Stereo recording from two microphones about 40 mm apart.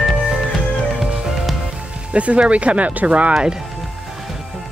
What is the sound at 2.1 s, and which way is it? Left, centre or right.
Speech, right.